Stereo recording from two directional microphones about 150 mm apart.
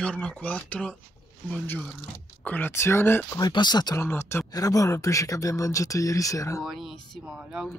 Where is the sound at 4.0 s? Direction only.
15° left (ahead or behind).